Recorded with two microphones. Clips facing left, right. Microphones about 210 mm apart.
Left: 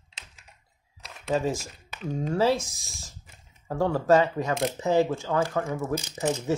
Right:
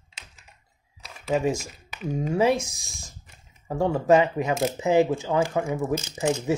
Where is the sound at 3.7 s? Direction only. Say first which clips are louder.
Right 2 dB; 15° right (ahead or behind).